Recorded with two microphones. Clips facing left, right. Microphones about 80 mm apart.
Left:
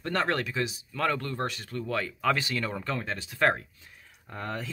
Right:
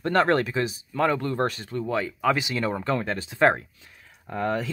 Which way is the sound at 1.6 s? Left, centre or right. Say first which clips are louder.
Right 4 dB; right.